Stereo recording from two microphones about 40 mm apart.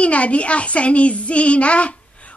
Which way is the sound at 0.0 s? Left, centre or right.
Left.